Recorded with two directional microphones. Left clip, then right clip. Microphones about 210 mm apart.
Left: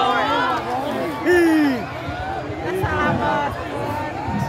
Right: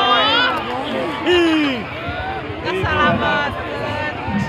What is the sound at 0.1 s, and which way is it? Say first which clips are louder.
Run: right 5 dB; 25° left (ahead or behind).